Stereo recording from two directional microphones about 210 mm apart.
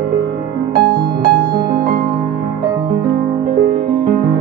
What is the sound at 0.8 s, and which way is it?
Music, 45° right (ahead or behind).